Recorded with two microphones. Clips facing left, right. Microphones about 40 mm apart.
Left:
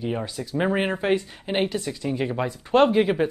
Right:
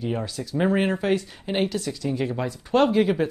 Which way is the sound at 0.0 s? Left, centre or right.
Centre.